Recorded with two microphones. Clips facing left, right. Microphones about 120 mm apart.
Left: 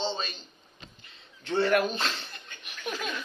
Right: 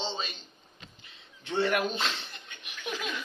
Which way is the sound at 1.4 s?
Centre (ahead or behind).